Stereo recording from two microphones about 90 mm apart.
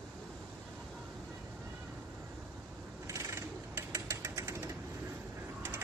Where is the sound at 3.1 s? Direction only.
35° right (ahead or behind).